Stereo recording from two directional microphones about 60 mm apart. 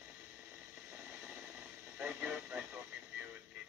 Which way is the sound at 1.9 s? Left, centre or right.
Right.